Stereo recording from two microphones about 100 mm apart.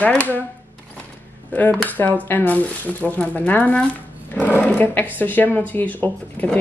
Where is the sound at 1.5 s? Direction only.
15° left (ahead or behind).